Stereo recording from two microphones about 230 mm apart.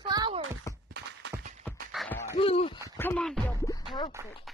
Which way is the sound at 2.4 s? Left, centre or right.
Left.